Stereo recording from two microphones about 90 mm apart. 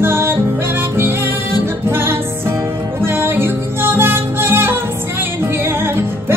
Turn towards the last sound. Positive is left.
turn(degrees=-25)  # may be behind; listen again after turning